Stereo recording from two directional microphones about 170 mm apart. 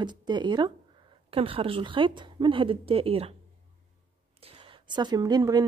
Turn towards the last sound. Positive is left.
turn(degrees=-25)  # may be behind; listen again after turning